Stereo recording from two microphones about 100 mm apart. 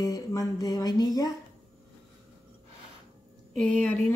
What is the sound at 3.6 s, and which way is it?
Speech, 10° left (ahead or behind).